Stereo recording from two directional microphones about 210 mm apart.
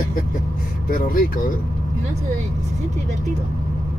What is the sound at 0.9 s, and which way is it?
Speech, 40° left (ahead or behind).